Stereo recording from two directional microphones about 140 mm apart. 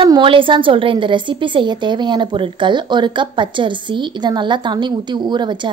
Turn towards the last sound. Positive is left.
turn(degrees=-30)  # may be behind; listen again after turning